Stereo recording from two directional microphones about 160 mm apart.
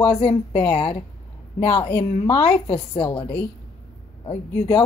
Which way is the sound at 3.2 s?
10° left (ahead or behind).